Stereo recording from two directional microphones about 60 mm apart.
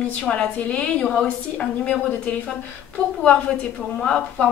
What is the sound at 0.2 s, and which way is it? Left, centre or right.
A woman's voice, centre.